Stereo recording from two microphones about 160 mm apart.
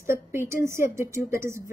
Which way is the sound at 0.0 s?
15° right (ahead or behind).